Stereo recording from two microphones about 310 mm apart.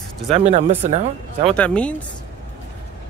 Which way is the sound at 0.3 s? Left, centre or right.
Right.